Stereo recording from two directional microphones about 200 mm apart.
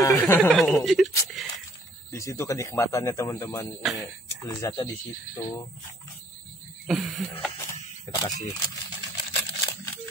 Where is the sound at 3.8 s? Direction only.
Centre (ahead or behind).